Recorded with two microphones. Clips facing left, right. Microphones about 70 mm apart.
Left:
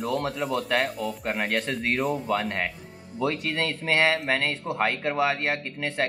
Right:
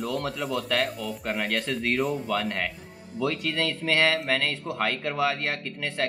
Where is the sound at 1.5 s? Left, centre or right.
Left.